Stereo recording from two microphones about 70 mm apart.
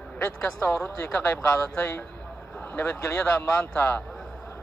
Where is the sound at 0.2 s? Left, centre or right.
Left.